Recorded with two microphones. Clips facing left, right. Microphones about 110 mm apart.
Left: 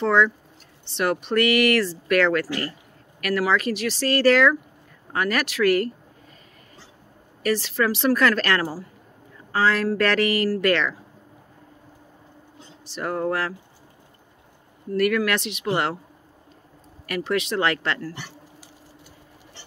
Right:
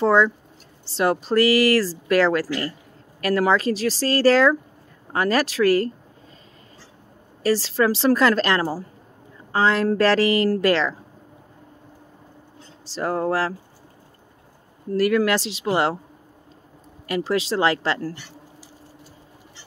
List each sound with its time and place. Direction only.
0.0 s speech: 30° right (ahead or behind)
7.4 s a woman's voice: 30° right (ahead or behind)
12.9 s speech: 30° right (ahead or behind)
15.0 s a woman's voice: 30° right (ahead or behind)
17.0 s a woman's voice: 30° right (ahead or behind)